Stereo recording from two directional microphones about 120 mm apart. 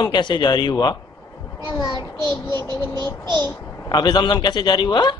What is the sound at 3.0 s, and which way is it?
Child singing, 35° right (ahead or behind).